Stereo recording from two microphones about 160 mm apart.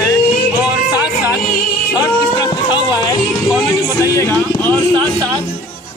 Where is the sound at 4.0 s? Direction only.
15° left (ahead or behind).